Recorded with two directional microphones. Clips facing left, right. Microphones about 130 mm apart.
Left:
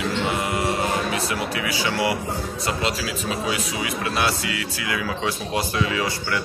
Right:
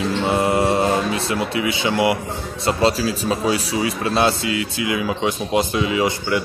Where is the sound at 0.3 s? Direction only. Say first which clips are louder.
Right 6 dB; 30° right (ahead or behind).